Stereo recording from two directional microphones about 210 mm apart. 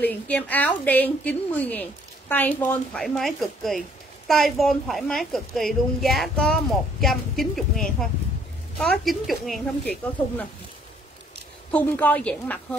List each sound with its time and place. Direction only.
0.0 s a woman's voice: 10° left (ahead or behind)
11.7 s a woman's voice: 5° left (ahead or behind)